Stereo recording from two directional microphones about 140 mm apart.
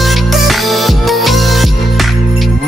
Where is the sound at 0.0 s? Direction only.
Centre (ahead or behind).